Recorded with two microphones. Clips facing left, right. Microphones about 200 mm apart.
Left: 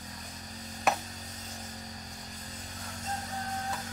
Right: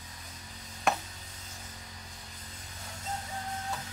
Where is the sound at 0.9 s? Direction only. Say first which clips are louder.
Even; centre (ahead or behind).